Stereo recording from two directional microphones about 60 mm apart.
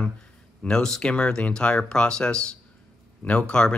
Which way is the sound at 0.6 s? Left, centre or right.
Centre.